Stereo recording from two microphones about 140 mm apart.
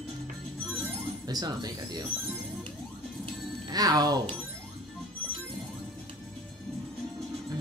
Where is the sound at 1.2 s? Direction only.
30° right (ahead or behind).